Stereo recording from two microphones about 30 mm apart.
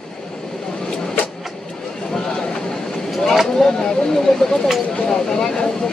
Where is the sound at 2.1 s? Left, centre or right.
Centre.